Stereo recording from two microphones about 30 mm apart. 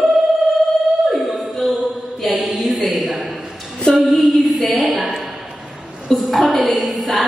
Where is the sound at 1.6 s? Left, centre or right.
Centre.